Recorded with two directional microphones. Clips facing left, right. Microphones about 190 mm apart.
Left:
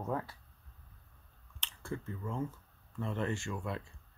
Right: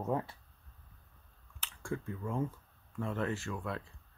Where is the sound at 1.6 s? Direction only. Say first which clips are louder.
Right 2 dB; 10° right (ahead or behind).